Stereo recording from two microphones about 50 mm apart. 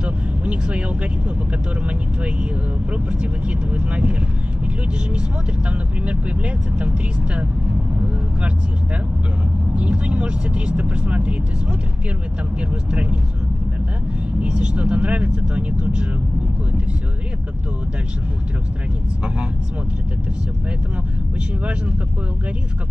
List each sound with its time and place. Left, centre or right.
0.0 s vehicle: right
2.9 s speech: right
5.7 s speech: right
9.8 s speech: right
12.9 s speech: right
14.4 s speech: right